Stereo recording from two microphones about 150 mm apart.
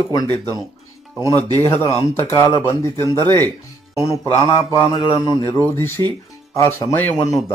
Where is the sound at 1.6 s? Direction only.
15° left (ahead or behind).